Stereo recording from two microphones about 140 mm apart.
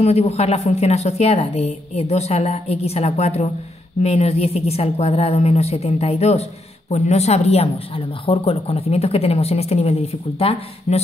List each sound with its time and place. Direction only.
0.0 s speech: 50° left (ahead or behind)